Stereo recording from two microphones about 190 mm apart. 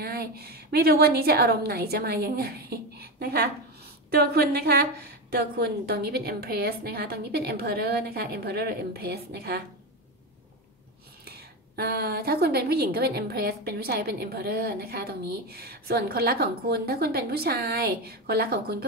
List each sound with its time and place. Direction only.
0.0 s a woman's voice: 55° right (ahead or behind)
11.2 s a woman's voice: 55° right (ahead or behind)